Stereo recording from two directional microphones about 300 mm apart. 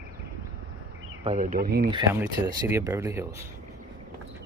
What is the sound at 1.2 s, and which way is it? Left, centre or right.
Speech, right.